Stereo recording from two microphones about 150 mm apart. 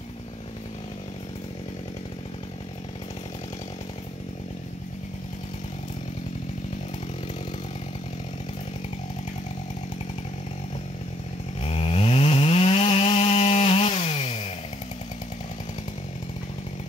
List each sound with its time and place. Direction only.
11.6 s chainsaw: 45° left (ahead or behind)